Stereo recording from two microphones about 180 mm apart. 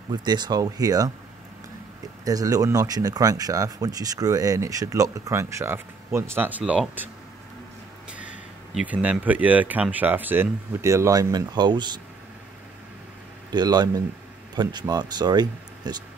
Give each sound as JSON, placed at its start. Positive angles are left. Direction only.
{"t": 0.1, "sound": "speech", "side_deg": -25}
{"t": 2.2, "sound": "speech", "side_deg": -20}
{"t": 8.7, "sound": "speech", "side_deg": -10}
{"t": 13.5, "sound": "speech", "side_deg": -25}